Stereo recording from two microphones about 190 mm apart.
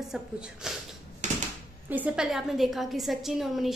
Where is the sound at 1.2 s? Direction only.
40° right (ahead or behind).